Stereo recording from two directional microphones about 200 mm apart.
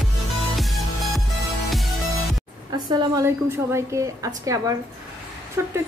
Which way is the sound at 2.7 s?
20° right (ahead or behind).